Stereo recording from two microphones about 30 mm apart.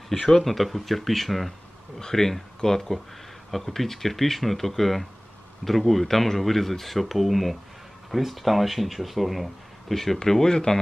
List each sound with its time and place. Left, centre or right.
0.4 s speech: centre
2.0 s speech: centre
10.1 s speech: centre